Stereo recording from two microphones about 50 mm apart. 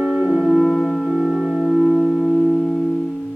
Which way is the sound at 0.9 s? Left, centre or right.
Right.